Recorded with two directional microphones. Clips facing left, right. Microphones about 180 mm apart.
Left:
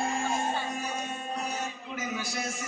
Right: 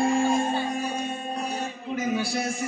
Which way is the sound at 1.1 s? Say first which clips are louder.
Right 4 dB; 30° right (ahead or behind).